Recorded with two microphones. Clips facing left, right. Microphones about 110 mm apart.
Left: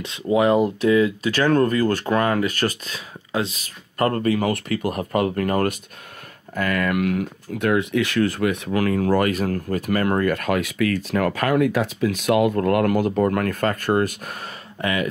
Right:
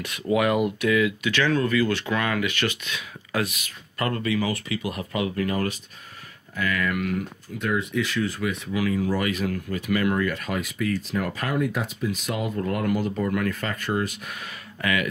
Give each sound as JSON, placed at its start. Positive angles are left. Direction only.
{"t": 0.0, "sound": "speech", "side_deg": 25}
{"t": 14.8, "sound": "speech", "side_deg": 30}